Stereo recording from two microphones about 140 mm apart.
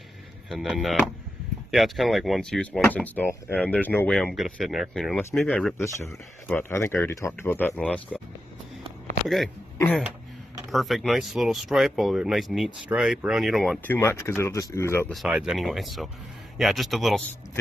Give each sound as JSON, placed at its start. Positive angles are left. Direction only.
{"t": 0.5, "sound": "speech", "side_deg": 0}
{"t": 6.0, "sound": "speech", "side_deg": 15}
{"t": 10.7, "sound": "speech", "side_deg": 0}
{"t": 13.8, "sound": "speech", "side_deg": 20}
{"t": 15.2, "sound": "speech", "side_deg": -5}